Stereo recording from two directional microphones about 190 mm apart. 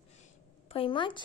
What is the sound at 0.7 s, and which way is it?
Speech, 25° left (ahead or behind).